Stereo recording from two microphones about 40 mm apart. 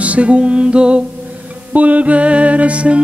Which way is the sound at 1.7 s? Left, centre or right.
Right.